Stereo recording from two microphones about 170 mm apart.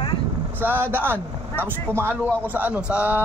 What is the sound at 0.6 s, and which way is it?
Speech, 10° right (ahead or behind).